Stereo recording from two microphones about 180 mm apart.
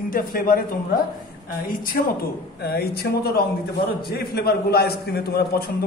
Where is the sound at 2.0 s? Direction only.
55° left (ahead or behind).